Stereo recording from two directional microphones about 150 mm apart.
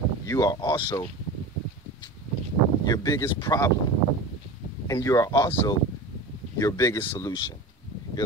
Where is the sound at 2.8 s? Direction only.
25° left (ahead or behind).